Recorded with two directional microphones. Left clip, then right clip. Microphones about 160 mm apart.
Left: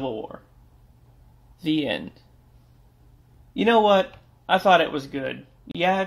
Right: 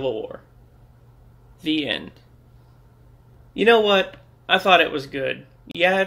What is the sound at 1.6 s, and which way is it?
Speech, 60° left (ahead or behind).